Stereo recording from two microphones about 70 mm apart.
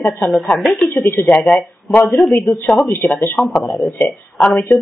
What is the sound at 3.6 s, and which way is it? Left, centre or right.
Speech, centre.